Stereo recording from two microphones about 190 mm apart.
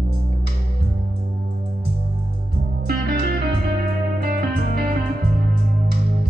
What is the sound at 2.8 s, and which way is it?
Music, 55° right (ahead or behind).